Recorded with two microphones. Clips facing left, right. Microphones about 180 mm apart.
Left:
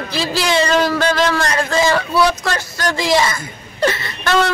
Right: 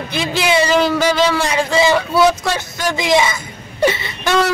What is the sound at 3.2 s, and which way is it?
Speech, 5° right (ahead or behind).